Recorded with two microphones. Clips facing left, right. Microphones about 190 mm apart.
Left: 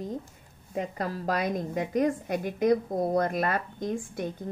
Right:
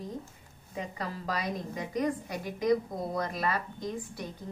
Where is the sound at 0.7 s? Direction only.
50° left (ahead or behind).